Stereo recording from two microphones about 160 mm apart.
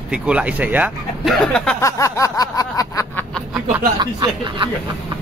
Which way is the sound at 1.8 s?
20° left (ahead or behind).